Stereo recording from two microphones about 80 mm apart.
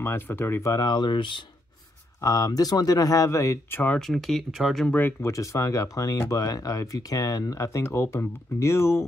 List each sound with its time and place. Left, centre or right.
0.0 s speech: left
0.7 s speech: left
2.2 s speech: left
4.0 s speech: centre
5.2 s speech: left